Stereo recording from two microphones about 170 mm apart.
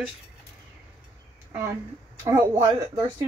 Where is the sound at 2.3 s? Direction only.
15° right (ahead or behind).